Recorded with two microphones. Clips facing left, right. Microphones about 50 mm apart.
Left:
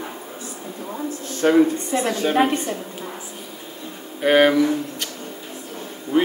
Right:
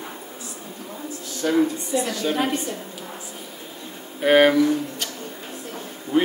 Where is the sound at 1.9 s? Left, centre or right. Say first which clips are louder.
Left 5 dB; left.